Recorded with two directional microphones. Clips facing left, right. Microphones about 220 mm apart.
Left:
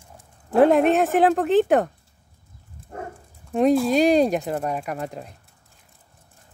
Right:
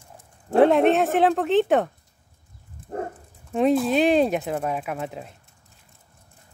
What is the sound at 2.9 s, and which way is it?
Speech, 35° right (ahead or behind).